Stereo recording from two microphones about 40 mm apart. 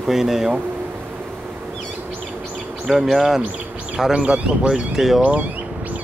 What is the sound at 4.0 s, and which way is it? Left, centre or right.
Speech, right.